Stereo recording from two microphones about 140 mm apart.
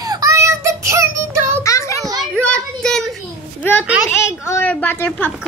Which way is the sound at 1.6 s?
20° left (ahead or behind).